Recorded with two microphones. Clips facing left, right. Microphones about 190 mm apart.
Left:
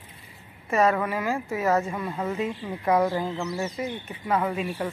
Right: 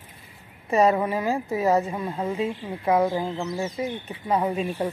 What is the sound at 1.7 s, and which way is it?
Speech, 15° right (ahead or behind).